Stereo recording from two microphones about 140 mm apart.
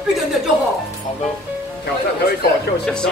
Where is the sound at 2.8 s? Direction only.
5° left (ahead or behind).